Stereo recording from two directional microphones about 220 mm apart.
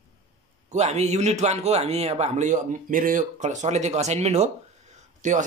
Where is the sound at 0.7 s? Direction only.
30° right (ahead or behind).